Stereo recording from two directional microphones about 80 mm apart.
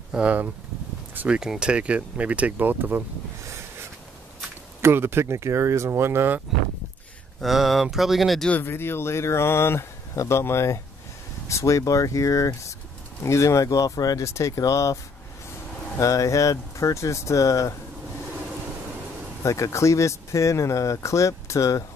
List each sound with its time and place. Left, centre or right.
0.1 s speech: centre
4.8 s speech: right
7.3 s speech: centre
8.6 s speech: left
16.0 s speech: left
19.4 s speech: left